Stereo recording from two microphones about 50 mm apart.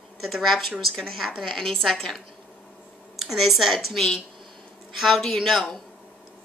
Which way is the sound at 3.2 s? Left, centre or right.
Centre.